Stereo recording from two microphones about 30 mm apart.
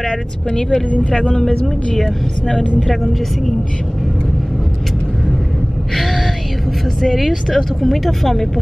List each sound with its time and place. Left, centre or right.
1.5 s speech: left
2.0 s speech: centre
5.9 s music: centre
7.5 s speech: centre